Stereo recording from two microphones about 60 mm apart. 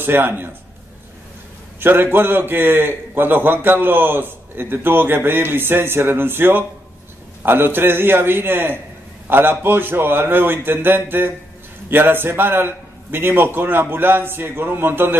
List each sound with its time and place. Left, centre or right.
0.0 s a man's voice: right
1.8 s a man's voice: right